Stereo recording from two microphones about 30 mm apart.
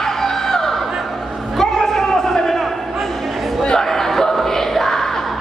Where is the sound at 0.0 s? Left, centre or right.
Centre.